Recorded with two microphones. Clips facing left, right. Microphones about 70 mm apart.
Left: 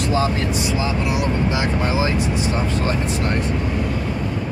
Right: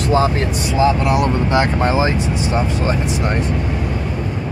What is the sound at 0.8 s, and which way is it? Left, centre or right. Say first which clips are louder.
Speech: right 7 dB; right.